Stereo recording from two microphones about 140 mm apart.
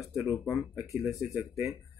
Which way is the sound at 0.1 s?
Centre (ahead or behind).